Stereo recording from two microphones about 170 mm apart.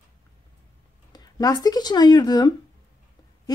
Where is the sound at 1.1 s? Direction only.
20° left (ahead or behind).